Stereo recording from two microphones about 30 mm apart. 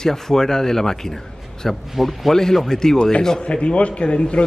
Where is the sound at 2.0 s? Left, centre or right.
Centre.